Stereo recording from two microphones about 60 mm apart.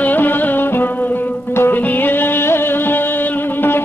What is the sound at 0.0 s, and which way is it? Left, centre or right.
Music, left.